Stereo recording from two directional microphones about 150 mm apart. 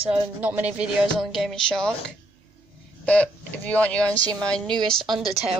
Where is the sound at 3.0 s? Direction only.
10° left (ahead or behind).